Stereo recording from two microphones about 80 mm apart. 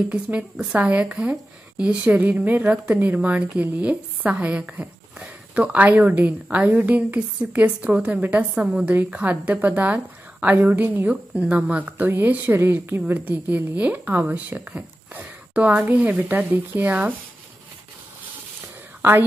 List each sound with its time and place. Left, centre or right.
0.1 s a woman's voice: centre
19.0 s a woman's voice: right